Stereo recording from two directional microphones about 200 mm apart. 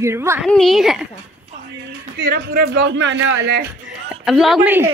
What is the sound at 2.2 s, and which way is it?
Speech, 50° right (ahead or behind).